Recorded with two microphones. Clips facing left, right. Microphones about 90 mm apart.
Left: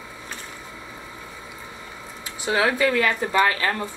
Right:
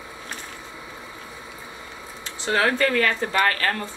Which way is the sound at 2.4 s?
10° left (ahead or behind).